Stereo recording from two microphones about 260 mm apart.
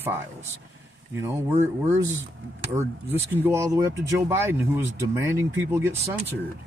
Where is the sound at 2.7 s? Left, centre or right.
Centre.